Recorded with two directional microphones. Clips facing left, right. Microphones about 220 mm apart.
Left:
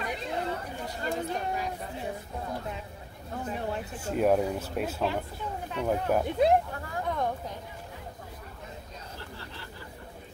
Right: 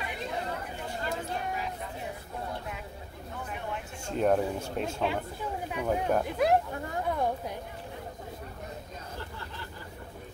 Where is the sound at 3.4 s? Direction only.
35° left (ahead or behind).